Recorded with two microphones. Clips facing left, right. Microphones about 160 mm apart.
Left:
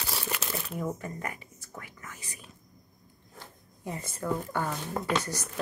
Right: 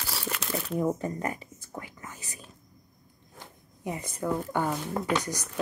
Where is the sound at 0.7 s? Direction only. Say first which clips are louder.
Right 8 dB; 30° right (ahead or behind).